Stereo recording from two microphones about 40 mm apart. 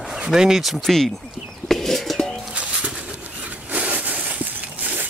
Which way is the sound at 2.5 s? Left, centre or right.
Right.